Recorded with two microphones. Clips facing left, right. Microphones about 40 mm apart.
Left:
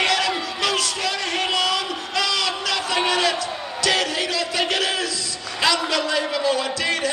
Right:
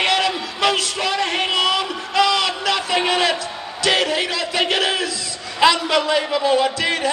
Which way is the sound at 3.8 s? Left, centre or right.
Right.